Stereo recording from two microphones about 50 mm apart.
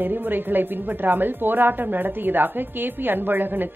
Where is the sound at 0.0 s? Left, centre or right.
Right.